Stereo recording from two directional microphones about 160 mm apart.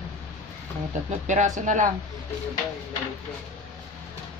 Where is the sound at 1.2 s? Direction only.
50° right (ahead or behind).